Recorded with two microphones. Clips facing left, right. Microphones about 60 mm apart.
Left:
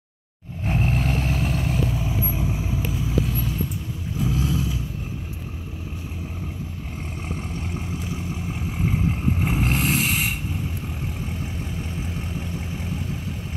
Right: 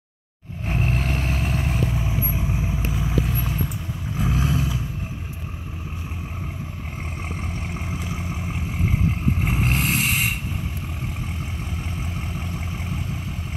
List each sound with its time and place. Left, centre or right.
0.7 s vehicle: centre; by 3.5 s right
4.2 s vehicle: right
7.3 s vehicle: centre
8.8 s vehicle: centre
12.4 s vehicle: right